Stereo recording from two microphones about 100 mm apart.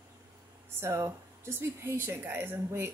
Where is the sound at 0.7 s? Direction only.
30° right (ahead or behind).